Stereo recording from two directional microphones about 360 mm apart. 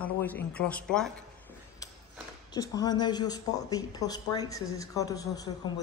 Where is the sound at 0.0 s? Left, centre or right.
Centre.